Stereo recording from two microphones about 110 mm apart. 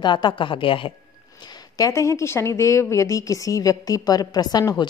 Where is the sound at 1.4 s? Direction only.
40° left (ahead or behind).